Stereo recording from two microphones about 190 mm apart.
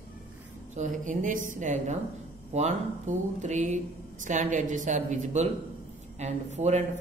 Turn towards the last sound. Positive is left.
turn(degrees=-35)  # may be behind; listen again after turning